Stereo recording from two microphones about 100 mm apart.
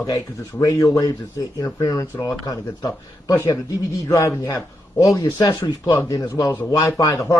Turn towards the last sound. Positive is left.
turn(degrees=35)  # may be behind; listen again after turning